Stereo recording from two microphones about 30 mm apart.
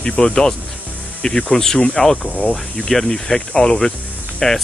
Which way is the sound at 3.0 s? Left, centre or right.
Centre.